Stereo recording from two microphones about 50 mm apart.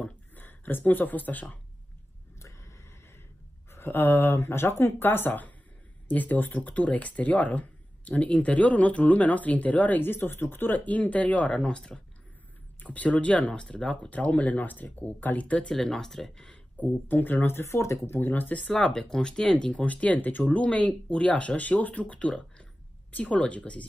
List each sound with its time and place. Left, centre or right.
0.4 s speech: left
2.3 s a sound: left
3.7 s speech: left
6.7 s speech: left
12.8 s speech: left
15.4 s speech: left
15.7 s speech: centre
16.7 s speech: left
17.7 s speech: left
18.1 s speech: left
18.8 s speech: centre
19.7 s speech: left